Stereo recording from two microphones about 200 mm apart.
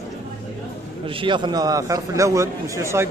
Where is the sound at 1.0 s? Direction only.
25° right (ahead or behind).